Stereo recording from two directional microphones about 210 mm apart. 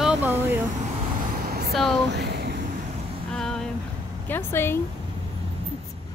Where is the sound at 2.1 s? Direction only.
55° right (ahead or behind).